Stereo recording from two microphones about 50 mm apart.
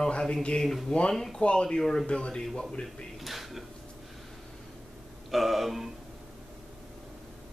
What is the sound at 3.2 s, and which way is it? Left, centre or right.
Mechanisms, centre.